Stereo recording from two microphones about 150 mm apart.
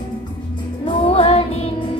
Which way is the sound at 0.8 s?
40° left (ahead or behind).